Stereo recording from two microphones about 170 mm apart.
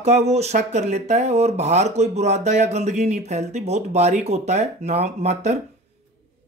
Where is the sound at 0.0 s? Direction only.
40° right (ahead or behind).